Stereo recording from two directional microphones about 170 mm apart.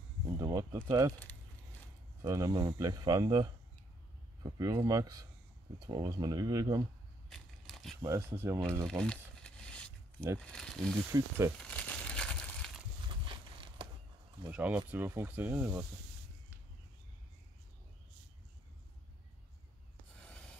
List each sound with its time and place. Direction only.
0.4 s speech: 20° right (ahead or behind)
2.2 s speech: 20° right (ahead or behind)
7.2 s crushing: centre (ahead or behind)
8.0 s speech: 15° right (ahead or behind)
8.8 s a sound: 5° left (ahead or behind)
10.4 s speech: 5° left (ahead or behind)
11.1 s speech: 15° right (ahead or behind)
11.6 s crumpling: 5° left (ahead or behind)
13.1 s a sound: 30° right (ahead or behind)
14.5 s speech: 10° right (ahead or behind)
20.2 s writing: 5° left (ahead or behind)